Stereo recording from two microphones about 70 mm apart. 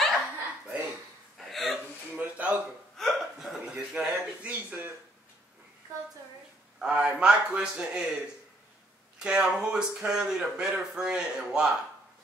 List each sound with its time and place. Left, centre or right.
0.0 s chuckle: centre
1.4 s hiccup: centre
2.1 s a sound: right
3.0 s hiccup: centre
6.8 s a sound: centre
9.2 s a man's voice: centre